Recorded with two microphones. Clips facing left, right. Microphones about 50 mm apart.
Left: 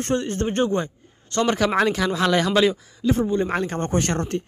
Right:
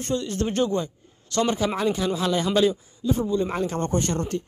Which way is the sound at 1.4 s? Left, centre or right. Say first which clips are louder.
Left 6 dB; left.